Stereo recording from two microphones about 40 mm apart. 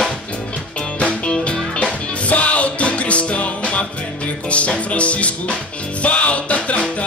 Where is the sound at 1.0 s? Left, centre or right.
Left.